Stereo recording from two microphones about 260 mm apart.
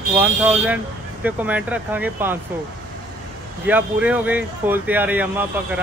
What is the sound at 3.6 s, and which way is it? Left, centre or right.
Speech, centre.